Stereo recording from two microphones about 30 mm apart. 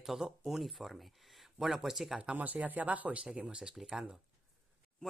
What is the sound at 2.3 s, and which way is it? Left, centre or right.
Speech, right.